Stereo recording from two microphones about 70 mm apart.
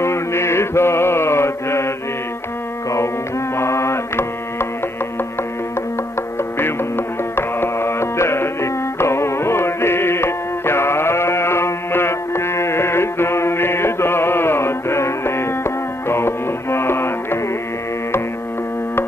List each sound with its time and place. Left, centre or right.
0.0 s mantra: left
3.5 s music: left
7.3 s music: left